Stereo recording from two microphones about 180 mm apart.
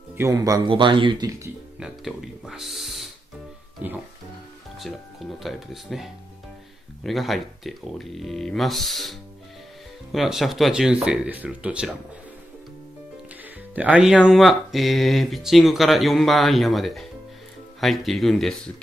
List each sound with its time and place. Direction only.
0.2 s speech: 20° right (ahead or behind)
1.8 s music: centre (ahead or behind)
3.8 s speech: 10° right (ahead or behind)
10.1 s speech: centre (ahead or behind)
13.7 s speech: 5° right (ahead or behind)